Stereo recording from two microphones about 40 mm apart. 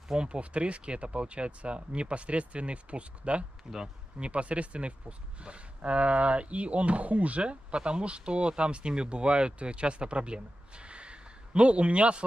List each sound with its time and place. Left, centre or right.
0.1 s speech: right